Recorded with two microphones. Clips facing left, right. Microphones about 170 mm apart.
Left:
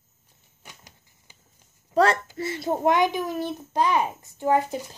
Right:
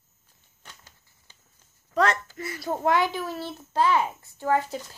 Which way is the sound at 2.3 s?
25° left (ahead or behind).